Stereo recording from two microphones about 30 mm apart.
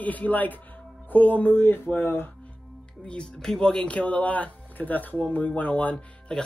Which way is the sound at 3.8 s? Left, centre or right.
Left.